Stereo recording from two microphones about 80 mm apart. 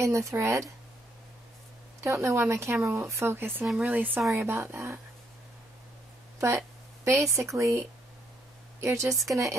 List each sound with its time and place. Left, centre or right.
0.0 s speech: right
2.0 s speech: right
4.4 s speech: right
7.1 s speech: right
8.8 s speech: right
9.1 s speech: centre